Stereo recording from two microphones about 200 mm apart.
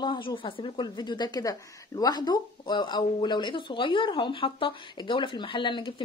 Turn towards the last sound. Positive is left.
turn(degrees=25)  # may be behind; listen again after turning